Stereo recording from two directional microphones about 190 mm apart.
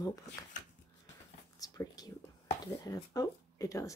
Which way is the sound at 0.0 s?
20° left (ahead or behind).